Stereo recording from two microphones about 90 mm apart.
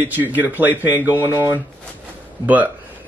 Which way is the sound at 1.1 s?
30° left (ahead or behind).